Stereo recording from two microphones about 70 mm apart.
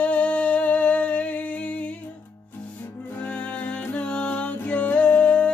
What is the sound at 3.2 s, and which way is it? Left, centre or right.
Music, left.